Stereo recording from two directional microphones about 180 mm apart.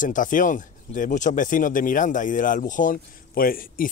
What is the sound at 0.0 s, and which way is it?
Speech, 45° left (ahead or behind).